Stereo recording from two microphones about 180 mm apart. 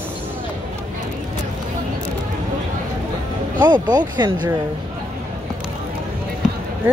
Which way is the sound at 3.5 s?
25° right (ahead or behind).